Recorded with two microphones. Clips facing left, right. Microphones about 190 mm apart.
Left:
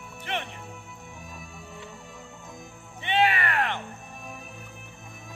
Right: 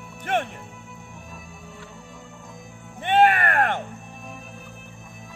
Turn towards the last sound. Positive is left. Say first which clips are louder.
# right 5 dB
turn(degrees=-50)  # may be behind; listen again after turning